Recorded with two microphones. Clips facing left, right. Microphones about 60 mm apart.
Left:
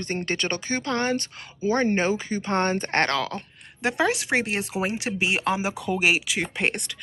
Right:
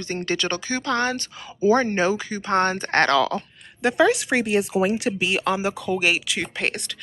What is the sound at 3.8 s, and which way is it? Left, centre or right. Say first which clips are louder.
Speech: right 5 dB; left.